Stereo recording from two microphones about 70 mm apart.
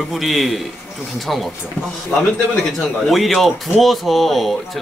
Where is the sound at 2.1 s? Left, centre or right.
Centre.